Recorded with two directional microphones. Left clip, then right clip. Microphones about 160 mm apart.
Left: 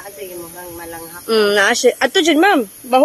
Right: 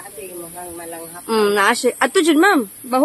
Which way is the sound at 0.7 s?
Centre (ahead or behind).